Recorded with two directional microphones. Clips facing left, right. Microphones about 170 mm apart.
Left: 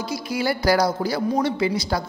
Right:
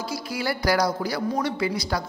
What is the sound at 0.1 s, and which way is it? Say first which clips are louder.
A woman's voice: left 5 dB; 25° left (ahead or behind).